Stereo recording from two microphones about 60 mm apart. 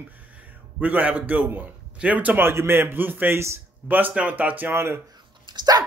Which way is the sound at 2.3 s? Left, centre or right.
Right.